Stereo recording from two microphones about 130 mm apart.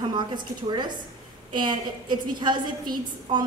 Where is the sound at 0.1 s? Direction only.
35° right (ahead or behind).